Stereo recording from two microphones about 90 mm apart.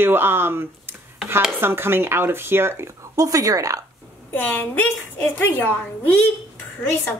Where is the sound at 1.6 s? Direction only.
25° right (ahead or behind).